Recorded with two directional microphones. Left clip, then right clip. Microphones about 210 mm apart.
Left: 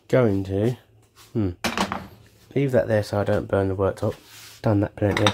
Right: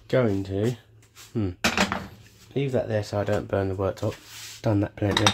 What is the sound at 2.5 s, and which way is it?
Speech, 30° left (ahead or behind).